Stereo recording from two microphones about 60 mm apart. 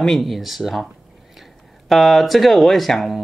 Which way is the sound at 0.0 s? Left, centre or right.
Centre.